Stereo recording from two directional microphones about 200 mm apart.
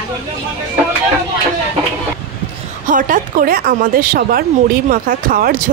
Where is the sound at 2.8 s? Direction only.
40° right (ahead or behind).